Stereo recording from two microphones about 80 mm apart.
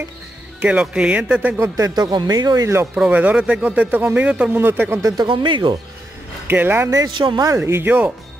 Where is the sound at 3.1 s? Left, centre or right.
Centre.